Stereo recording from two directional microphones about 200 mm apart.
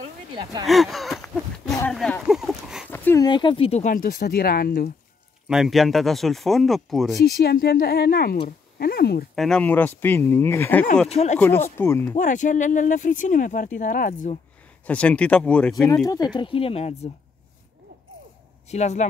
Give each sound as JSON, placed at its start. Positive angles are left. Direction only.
{"t": 0.4, "sound": "speech", "side_deg": -20}
{"t": 0.7, "sound": "a sound", "side_deg": 0}
{"t": 2.9, "sound": "a sound", "side_deg": 10}
{"t": 3.3, "sound": "speech", "side_deg": 25}
{"t": 5.5, "sound": "speech", "side_deg": 0}
{"t": 7.2, "sound": "speech", "side_deg": 55}
{"t": 9.3, "sound": "speech", "side_deg": 0}
{"t": 11.1, "sound": "speech", "side_deg": 30}
{"t": 11.3, "sound": "speech", "side_deg": 10}
{"t": 12.2, "sound": "speech", "side_deg": 40}
{"t": 14.9, "sound": "speech", "side_deg": 5}
{"t": 16.1, "sound": "speech", "side_deg": 20}
{"t": 18.7, "sound": "speech", "side_deg": 35}